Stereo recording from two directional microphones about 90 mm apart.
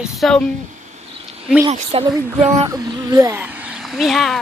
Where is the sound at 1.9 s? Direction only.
90° right.